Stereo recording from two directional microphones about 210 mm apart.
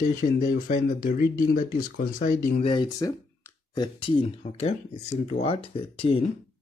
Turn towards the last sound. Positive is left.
turn(degrees=25)  # may be behind; listen again after turning